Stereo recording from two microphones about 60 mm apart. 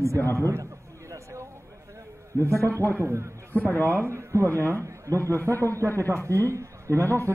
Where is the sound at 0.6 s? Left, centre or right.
Right.